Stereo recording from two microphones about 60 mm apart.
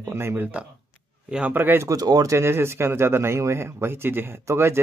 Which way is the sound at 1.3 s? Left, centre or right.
Centre.